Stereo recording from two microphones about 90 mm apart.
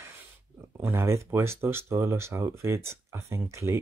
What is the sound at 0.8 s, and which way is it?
Speech, 30° right (ahead or behind).